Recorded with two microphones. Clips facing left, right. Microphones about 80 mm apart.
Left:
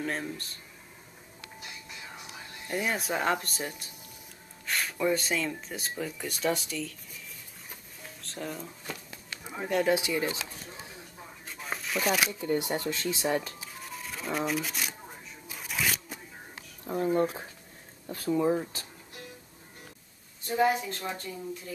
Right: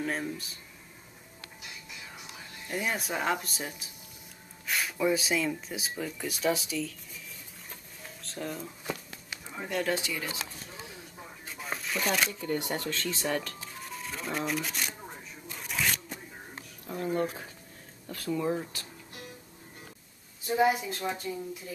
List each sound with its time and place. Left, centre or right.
0.0 s speech: centre
2.7 s speech: centre
8.0 s a sound: centre
9.5 s speech: centre
11.4 s shuffling cards: centre
12.3 s speech: centre
13.7 s music: centre
15.4 s shuffling cards: centre
16.8 s speech: left
20.4 s speech: centre